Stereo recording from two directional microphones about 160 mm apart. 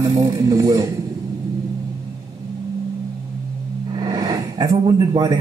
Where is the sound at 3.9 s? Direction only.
25° right (ahead or behind).